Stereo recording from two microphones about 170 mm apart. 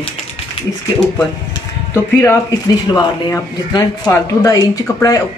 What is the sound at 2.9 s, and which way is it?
Speech, 20° left (ahead or behind).